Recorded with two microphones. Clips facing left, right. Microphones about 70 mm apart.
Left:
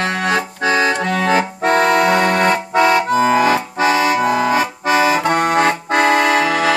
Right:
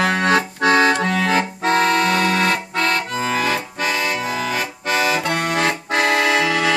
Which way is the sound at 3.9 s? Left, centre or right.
Left.